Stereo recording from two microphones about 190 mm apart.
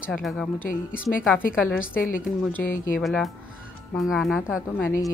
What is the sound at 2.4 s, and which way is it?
Speech, 10° left (ahead or behind).